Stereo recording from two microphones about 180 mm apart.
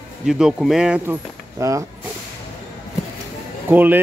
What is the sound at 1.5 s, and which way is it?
Speech, 15° right (ahead or behind).